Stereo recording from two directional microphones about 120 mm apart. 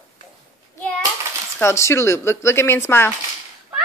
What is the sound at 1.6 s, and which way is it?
Speech, 25° left (ahead or behind).